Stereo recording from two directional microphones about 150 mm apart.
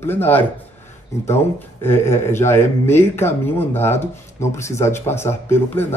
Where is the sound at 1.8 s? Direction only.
15° left (ahead or behind).